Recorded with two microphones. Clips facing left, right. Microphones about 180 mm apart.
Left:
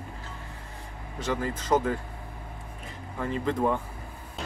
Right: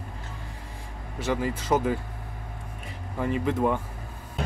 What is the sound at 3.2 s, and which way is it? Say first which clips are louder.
Speech: right 2 dB; 10° right (ahead or behind).